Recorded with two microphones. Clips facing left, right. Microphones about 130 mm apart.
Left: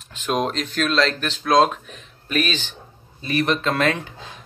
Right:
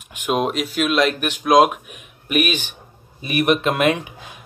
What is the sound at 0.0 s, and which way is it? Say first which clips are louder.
Speech: right 2 dB; 15° right (ahead or behind).